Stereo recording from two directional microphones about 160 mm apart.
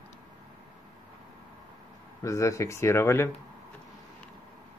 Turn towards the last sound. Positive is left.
turn(degrees=15)  # may be behind; listen again after turning